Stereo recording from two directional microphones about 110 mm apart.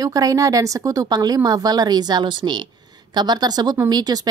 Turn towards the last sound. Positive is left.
turn(degrees=-40)  # may be behind; listen again after turning